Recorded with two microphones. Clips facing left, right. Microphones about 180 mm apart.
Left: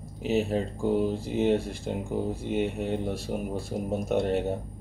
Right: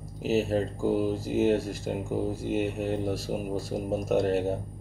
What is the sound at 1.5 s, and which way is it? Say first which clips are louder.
Speech: even; 40° right (ahead or behind).